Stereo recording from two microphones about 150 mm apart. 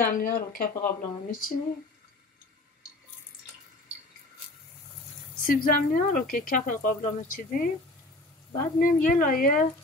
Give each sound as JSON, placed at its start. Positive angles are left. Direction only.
{"t": 0.0, "sound": "speech", "side_deg": 70}
{"t": 1.0, "sound": "speech", "side_deg": 65}
{"t": 5.5, "sound": "speech", "side_deg": 65}
{"t": 8.7, "sound": "speech", "side_deg": 65}